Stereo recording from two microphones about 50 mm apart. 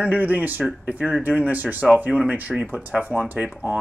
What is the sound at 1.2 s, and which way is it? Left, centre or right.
Speech, right.